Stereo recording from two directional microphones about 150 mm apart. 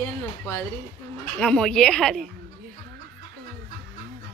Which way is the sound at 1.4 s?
5° left (ahead or behind).